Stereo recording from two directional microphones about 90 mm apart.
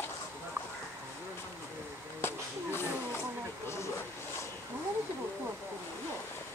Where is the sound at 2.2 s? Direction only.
25° left (ahead or behind).